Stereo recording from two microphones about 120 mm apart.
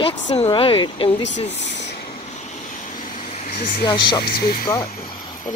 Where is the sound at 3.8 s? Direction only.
40° left (ahead or behind).